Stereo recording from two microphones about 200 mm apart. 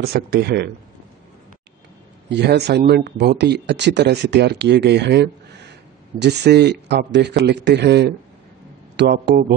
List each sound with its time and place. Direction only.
0.0 s speech: 55° right (ahead or behind)
2.2 s speech: 60° right (ahead or behind)